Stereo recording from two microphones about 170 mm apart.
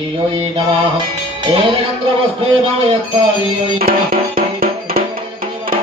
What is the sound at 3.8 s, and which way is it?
Music, 60° right (ahead or behind).